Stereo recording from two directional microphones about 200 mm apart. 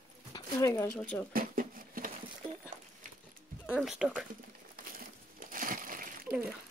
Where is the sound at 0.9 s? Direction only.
5° left (ahead or behind).